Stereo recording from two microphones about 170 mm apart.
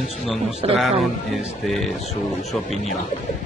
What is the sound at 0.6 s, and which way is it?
Speech, 35° right (ahead or behind).